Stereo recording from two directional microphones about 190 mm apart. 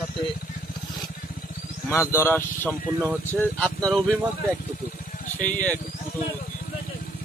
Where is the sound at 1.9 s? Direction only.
15° left (ahead or behind).